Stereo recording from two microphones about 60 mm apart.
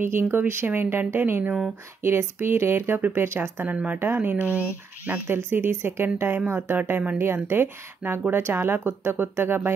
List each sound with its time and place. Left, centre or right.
0.1 s speech: right
3.6 s speech: right
6.1 s speech: right